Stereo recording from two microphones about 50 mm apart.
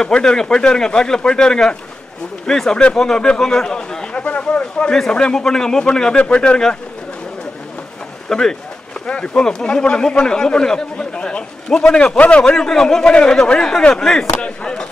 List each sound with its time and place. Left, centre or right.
0.0 s speech: centre
8.3 s speech: centre
12.5 s speech: centre